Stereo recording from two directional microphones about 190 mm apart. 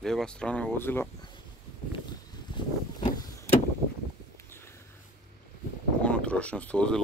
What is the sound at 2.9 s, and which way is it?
Vehicle, 20° left (ahead or behind).